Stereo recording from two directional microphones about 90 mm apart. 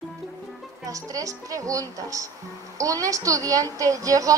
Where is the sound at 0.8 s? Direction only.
40° right (ahead or behind).